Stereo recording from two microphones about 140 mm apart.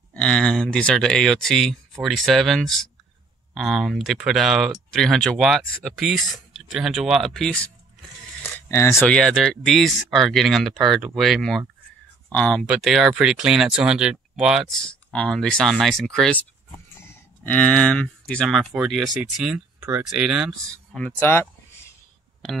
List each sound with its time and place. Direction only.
0.1 s speech: 5° left (ahead or behind)
8.5 s speech: 20° left (ahead or behind)
9.1 s speech: centre (ahead or behind)
12.6 s speech: 5° right (ahead or behind)
17.0 s a sound: 15° left (ahead or behind)
18.3 s speech: centre (ahead or behind)
20.6 s speech: 5° left (ahead or behind)